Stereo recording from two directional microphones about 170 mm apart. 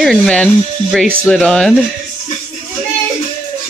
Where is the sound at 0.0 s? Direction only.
5° left (ahead or behind).